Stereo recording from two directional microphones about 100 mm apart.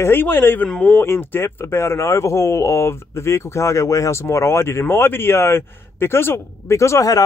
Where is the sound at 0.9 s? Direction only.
20° left (ahead or behind).